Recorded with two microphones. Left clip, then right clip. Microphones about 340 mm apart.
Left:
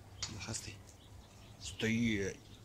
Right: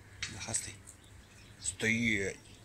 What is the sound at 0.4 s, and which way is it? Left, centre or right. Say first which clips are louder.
Speech: right 5 dB; centre.